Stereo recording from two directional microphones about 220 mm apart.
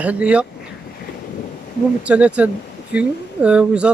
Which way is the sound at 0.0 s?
5° right (ahead or behind).